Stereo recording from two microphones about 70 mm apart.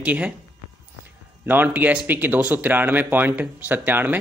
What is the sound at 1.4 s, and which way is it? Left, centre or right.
Speech, right.